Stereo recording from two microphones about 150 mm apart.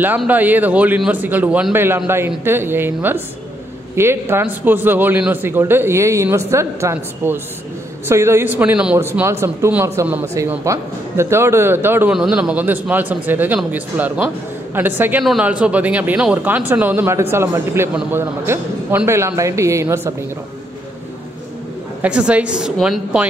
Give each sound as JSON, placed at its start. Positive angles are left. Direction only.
{"t": 0.3, "sound": "a man's voice", "side_deg": -10}
{"t": 22.0, "sound": "a man's voice", "side_deg": -10}